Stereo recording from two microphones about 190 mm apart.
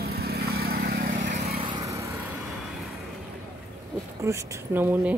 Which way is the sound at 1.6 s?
20° right (ahead or behind).